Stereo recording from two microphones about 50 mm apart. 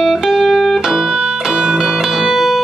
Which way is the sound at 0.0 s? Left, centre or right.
Centre.